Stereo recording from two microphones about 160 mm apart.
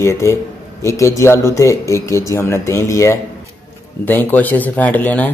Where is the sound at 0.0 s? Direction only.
15° left (ahead or behind).